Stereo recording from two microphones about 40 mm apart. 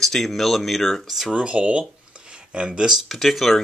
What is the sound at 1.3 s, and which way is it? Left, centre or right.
Speech, right.